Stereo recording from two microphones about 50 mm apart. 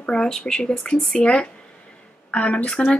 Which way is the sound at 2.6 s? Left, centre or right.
Centre.